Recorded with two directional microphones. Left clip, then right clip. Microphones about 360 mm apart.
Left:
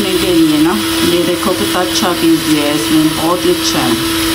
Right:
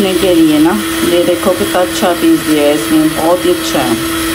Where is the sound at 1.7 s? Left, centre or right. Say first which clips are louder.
Right 2 dB; centre.